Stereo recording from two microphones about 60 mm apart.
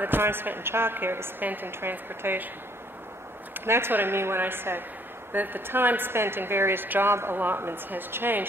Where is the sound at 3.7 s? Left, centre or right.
Right.